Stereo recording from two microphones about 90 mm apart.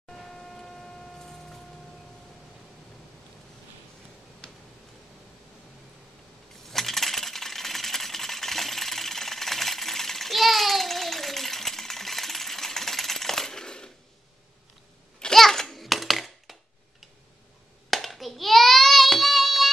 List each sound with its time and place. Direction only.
0.1 s vehicle: 5° left (ahead or behind)
6.7 s coin: 5° left (ahead or behind)
15.1 s a sound: 5° left (ahead or behind)
17.8 s child singing: centre (ahead or behind)